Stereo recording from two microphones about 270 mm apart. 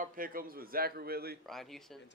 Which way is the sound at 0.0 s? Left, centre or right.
Right.